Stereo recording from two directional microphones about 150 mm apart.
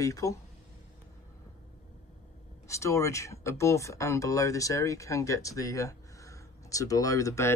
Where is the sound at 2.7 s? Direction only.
20° left (ahead or behind).